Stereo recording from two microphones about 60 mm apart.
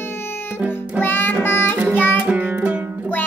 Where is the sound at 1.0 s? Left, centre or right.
Left.